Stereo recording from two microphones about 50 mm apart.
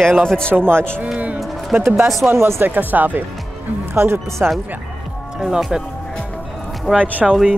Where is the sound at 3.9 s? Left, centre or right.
Right.